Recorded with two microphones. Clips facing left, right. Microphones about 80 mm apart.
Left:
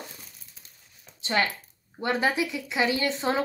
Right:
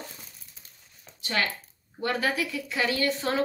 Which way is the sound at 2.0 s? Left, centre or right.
Left.